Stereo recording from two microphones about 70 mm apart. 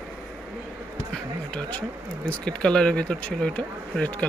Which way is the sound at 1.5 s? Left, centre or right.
Left.